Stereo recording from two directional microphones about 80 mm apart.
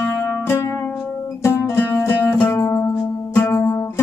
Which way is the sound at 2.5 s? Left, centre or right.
Left.